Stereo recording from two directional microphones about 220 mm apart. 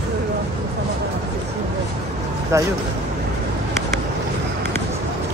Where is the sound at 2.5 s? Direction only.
15° right (ahead or behind).